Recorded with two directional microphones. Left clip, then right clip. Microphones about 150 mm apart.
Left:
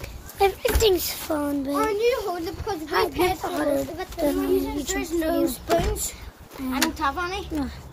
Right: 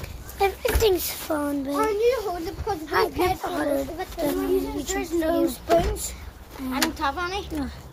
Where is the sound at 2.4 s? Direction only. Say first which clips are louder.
Even; 10° left (ahead or behind).